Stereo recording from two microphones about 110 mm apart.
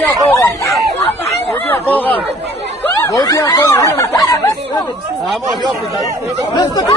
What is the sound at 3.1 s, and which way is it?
Speech, 35° left (ahead or behind).